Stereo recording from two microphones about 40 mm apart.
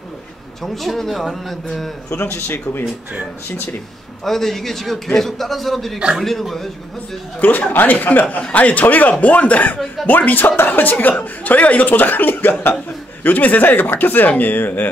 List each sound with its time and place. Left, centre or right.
0.6 s a man's voice: centre
2.1 s a man's voice: left
4.2 s a man's voice: centre
7.3 s speech: left
8.4 s a man's voice: left